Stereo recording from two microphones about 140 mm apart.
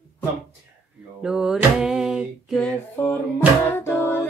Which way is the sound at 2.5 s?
10° left (ahead or behind).